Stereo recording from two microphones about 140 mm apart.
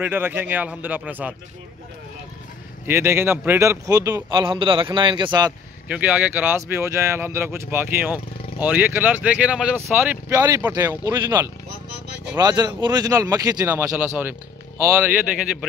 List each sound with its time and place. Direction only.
0.0 s speech: 15° right (ahead or behind)
2.9 s a man's voice: 15° right (ahead or behind); by 5.5 s 35° right (ahead or behind)
5.9 s a man's voice: 10° right (ahead or behind); by 13.7 s 25° right (ahead or behind)
13.7 s speech: 10° right (ahead or behind)